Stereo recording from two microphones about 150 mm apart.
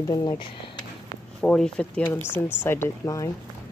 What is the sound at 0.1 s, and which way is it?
Speech, 30° left (ahead or behind).